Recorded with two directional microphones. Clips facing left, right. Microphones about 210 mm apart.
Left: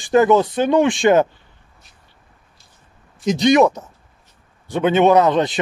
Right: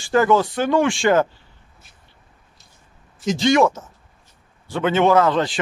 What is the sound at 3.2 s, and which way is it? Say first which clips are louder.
A man's voice: left 3 dB; 20° left (ahead or behind).